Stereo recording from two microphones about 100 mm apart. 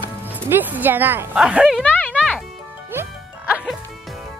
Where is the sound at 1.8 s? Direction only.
15° left (ahead or behind).